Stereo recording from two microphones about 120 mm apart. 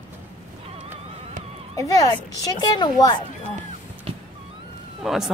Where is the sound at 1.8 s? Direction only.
30° left (ahead or behind).